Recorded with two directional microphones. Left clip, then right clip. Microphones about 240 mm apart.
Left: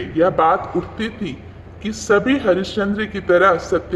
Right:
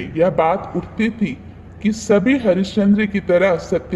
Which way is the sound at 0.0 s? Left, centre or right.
Right.